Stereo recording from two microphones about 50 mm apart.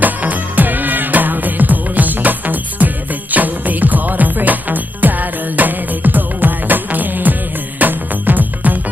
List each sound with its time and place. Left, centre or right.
0.0 s music: right